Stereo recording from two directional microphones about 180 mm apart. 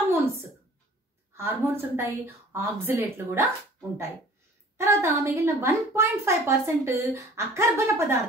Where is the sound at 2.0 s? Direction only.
15° right (ahead or behind).